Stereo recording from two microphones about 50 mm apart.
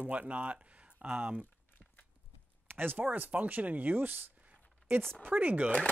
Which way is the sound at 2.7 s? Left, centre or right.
Right.